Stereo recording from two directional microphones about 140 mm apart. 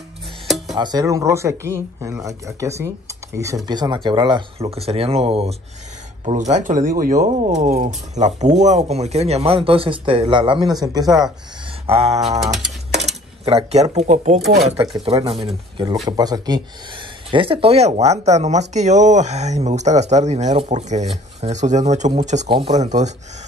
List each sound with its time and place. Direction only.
0.7 s speech: 30° right (ahead or behind); by 5.6 s 45° right (ahead or behind)
6.3 s speech: 60° right (ahead or behind); by 11.2 s 30° right (ahead or behind)
11.8 s a sound: 45° right (ahead or behind)
12.9 s cutlery: 50° right (ahead or behind)
13.9 s speech: 60° right (ahead or behind); by 16.6 s 30° right (ahead or behind)
17.3 s speech: 40° right (ahead or behind); by 22.5 s 55° right (ahead or behind)
22.5 s speech: 35° right (ahead or behind)
22.8 s speech: 55° right (ahead or behind)